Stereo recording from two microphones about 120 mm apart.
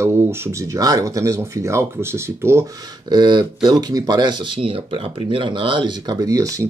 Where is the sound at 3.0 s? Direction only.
40° right (ahead or behind).